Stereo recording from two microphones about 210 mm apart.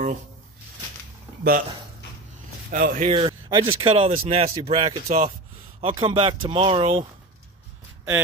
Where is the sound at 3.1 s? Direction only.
25° right (ahead or behind).